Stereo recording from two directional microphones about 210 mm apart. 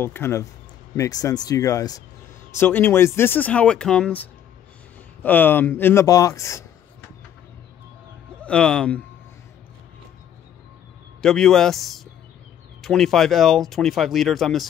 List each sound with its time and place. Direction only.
0.0 s speech: 10° left (ahead or behind)
8.5 s speech: 5° left (ahead or behind)
11.1 s speech: centre (ahead or behind)